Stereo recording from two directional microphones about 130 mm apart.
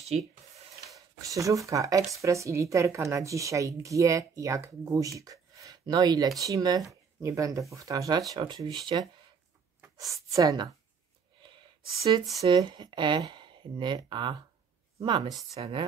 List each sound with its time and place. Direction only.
0.9 s speech: 25° right (ahead or behind)
11.4 s a sound: 40° right (ahead or behind)
12.5 s speech: 35° right (ahead or behind)
15.6 s speech: 40° right (ahead or behind)